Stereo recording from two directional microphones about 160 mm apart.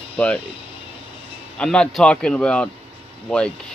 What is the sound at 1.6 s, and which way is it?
A man's voice, 5° left (ahead or behind).